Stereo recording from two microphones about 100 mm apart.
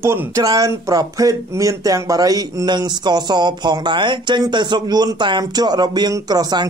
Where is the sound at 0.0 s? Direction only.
25° right (ahead or behind).